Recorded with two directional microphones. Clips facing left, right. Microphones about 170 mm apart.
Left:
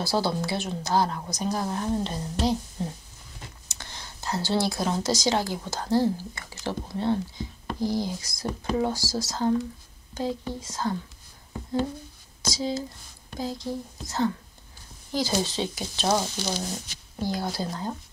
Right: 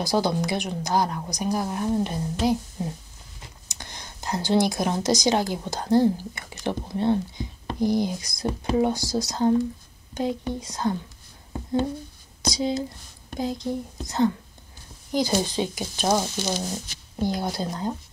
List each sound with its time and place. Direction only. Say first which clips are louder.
0.0 s a woman's voice: right 3 dB; 15° right (ahead or behind)
12.4 s a woman's voice: right 3 dB; 20° right (ahead or behind)